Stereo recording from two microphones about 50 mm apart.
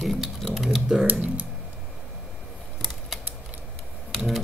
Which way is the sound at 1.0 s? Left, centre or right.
Right.